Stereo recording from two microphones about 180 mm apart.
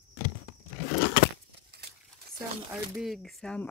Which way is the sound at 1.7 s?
60° right (ahead or behind).